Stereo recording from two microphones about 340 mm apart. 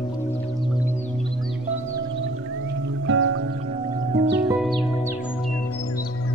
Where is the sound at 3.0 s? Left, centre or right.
Right.